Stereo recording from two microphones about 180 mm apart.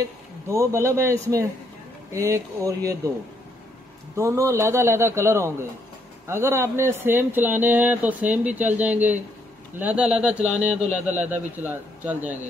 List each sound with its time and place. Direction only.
0.5 s speech: 15° right (ahead or behind)
4.2 s speech: 15° right (ahead or behind)